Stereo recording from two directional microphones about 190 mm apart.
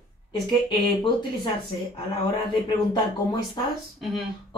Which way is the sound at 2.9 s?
25° left (ahead or behind).